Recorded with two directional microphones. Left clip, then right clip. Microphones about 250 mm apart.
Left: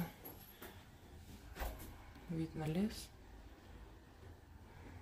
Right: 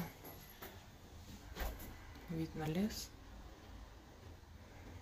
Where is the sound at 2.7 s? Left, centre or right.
Centre.